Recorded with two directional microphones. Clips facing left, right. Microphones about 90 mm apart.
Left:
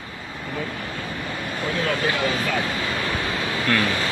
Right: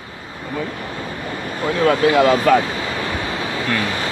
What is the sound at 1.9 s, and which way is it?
Speech, 70° right (ahead or behind).